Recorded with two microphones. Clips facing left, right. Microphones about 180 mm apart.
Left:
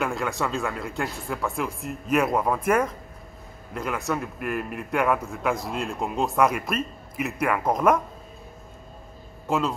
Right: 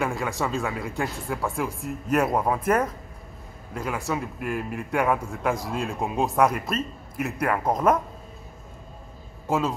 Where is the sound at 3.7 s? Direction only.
5° right (ahead or behind).